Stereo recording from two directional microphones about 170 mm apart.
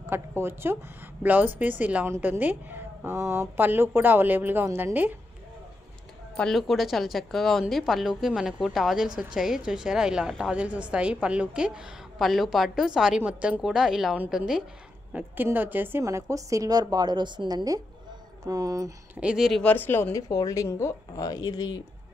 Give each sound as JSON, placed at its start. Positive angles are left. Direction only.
{"t": 0.0, "sound": "a woman's voice", "side_deg": -15}
{"t": 6.3, "sound": "a woman's voice", "side_deg": 0}
{"t": 19.1, "sound": "a woman's voice", "side_deg": -5}
{"t": 19.6, "sound": "a woman's voice", "side_deg": 10}